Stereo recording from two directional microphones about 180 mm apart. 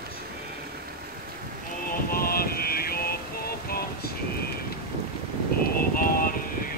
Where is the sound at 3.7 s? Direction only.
55° left (ahead or behind).